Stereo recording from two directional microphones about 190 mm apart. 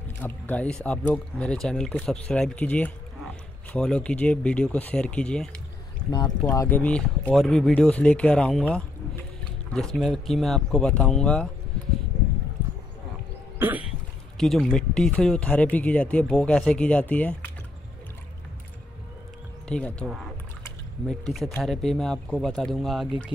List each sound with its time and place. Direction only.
0.2 s speech: 10° left (ahead or behind)
6.0 s speech: 20° left (ahead or behind); by 11.4 s 5° left (ahead or behind)
13.6 s cough: 10° right (ahead or behind)
14.3 s speech: centre (ahead or behind)
19.7 s speech: 5° left (ahead or behind)